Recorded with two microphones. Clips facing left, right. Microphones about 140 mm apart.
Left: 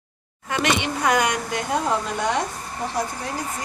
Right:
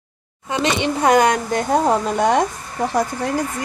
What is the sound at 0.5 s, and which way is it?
Speech, 30° right (ahead or behind).